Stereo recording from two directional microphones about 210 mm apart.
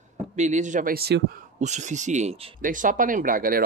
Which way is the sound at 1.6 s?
35° right (ahead or behind).